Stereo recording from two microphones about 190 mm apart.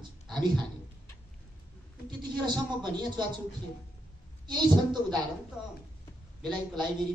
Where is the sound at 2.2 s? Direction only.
25° right (ahead or behind).